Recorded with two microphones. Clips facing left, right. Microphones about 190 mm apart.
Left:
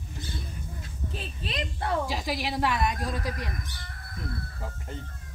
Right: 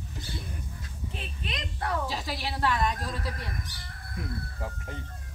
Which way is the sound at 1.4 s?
30° left (ahead or behind).